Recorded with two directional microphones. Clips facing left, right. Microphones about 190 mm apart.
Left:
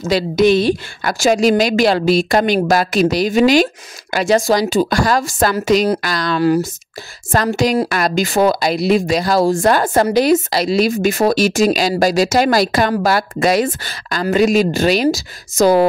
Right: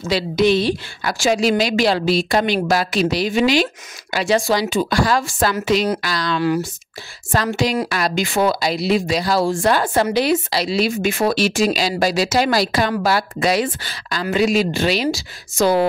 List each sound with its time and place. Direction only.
0.0 s a woman's voice: 45° left (ahead or behind)